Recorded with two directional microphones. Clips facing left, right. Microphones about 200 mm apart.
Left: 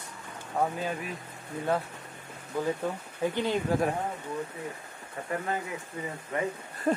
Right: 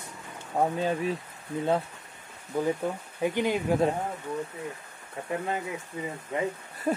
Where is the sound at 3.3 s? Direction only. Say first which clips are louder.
Right 2 dB; 15° right (ahead or behind).